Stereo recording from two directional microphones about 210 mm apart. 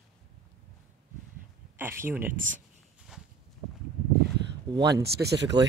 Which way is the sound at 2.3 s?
40° right (ahead or behind).